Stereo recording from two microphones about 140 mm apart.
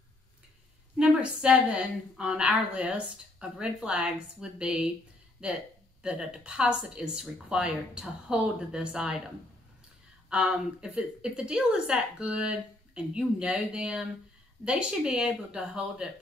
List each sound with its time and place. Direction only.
0.9 s a woman's voice: 5° right (ahead or behind)
10.3 s a woman's voice: 5° right (ahead or behind)